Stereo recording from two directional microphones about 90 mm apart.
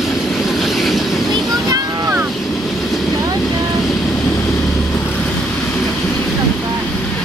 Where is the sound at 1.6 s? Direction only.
45° right (ahead or behind).